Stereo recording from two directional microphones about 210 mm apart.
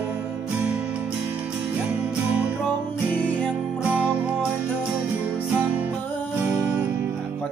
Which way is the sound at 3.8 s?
5° right (ahead or behind).